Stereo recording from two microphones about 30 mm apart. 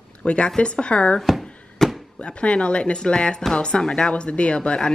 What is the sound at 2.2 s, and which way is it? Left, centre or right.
Speech, left.